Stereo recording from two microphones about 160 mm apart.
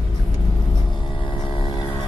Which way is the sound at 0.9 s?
30° left (ahead or behind).